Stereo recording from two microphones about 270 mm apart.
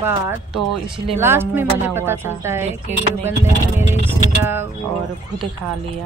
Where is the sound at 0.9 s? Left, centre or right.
Centre.